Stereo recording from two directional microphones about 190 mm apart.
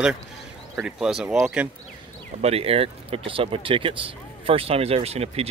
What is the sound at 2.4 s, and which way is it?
Speech, 30° right (ahead or behind).